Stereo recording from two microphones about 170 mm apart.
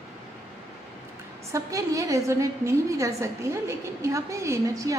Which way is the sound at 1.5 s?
20° right (ahead or behind).